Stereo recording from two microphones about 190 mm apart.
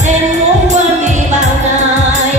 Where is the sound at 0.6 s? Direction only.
40° right (ahead or behind).